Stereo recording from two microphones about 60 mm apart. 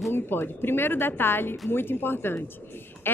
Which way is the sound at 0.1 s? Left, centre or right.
Left.